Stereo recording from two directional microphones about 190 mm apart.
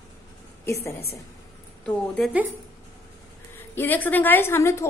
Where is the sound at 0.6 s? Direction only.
15° left (ahead or behind).